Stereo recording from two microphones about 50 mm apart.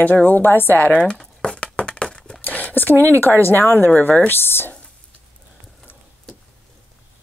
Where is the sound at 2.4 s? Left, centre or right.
Left.